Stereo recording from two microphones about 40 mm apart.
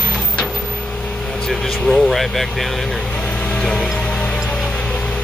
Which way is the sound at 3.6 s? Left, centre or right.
Left.